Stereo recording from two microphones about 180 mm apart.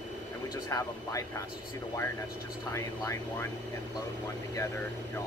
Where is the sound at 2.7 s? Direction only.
15° left (ahead or behind).